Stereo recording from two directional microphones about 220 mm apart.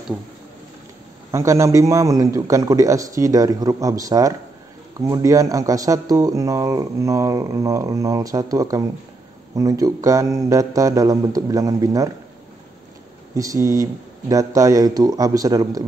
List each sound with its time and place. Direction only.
1.3 s speech: 15° right (ahead or behind)
13.3 s speech: 15° right (ahead or behind)